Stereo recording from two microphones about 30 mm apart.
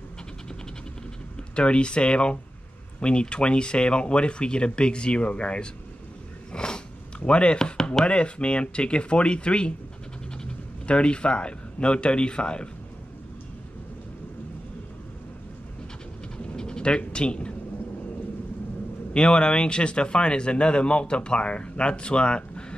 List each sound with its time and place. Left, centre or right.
1.5 s speech: left
6.5 s a sound: left
7.2 s speech: left
10.9 s speech: left
16.5 s a sound: left
19.1 s speech: left